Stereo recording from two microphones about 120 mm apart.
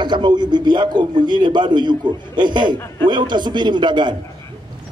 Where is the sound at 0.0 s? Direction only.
40° right (ahead or behind).